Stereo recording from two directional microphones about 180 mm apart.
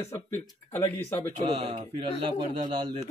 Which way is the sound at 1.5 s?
35° right (ahead or behind).